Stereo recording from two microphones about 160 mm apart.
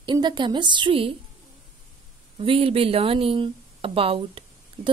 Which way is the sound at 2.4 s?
35° right (ahead or behind).